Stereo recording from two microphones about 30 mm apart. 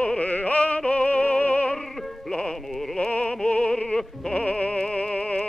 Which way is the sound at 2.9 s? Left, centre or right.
Left.